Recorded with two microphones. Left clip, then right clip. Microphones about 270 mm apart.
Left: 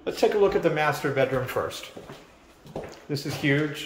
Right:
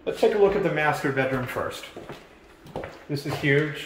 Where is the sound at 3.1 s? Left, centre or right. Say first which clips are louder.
Left 1 dB; centre.